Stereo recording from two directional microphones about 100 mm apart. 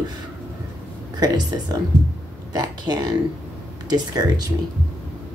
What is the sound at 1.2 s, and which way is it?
Speech, 40° right (ahead or behind).